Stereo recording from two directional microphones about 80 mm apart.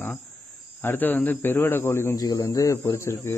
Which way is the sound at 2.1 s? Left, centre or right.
Left.